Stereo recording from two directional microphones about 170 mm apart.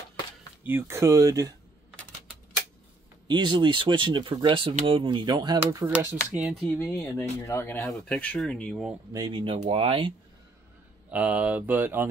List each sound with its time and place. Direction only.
0.7 s speech: 15° right (ahead or behind)
3.3 s speech: 25° right (ahead or behind)
5.9 s speech: 5° right (ahead or behind)
6.6 s speech: 15° left (ahead or behind)
9.1 s speech: 25° right (ahead or behind)
11.1 s speech: 10° right (ahead or behind)